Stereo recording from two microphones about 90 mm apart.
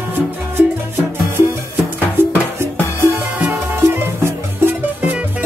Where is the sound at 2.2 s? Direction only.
25° right (ahead or behind).